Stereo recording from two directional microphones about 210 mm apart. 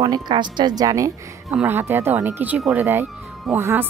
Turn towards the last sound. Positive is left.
turn(degrees=-10)  # may be behind; listen again after turning